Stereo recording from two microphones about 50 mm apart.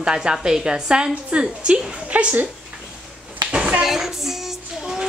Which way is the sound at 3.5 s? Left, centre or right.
Right.